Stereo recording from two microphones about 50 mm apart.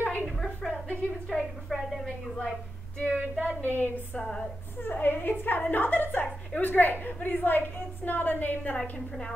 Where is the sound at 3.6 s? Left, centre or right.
Left.